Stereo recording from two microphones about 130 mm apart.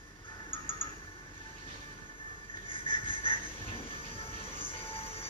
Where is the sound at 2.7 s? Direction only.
45° left (ahead or behind).